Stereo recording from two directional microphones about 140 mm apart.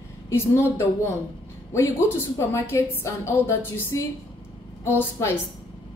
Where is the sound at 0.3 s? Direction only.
20° left (ahead or behind).